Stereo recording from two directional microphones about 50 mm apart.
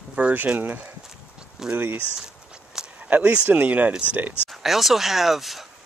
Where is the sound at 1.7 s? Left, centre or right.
Right.